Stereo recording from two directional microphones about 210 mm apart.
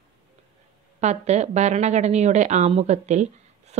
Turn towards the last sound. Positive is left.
turn(degrees=-30)  # may be behind; listen again after turning